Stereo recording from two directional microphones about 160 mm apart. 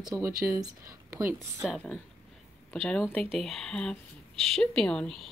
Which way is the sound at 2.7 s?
10° left (ahead or behind).